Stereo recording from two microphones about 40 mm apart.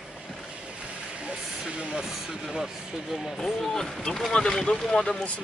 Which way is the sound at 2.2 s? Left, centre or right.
Centre.